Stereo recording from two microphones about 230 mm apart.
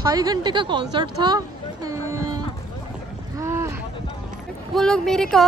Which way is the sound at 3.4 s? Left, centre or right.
Centre.